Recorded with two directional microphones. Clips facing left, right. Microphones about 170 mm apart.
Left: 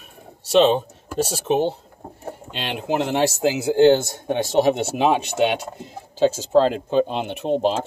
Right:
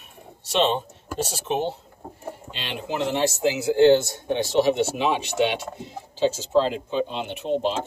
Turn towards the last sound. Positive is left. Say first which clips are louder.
# left 4 dB
turn(degrees=40)  # may be behind; listen again after turning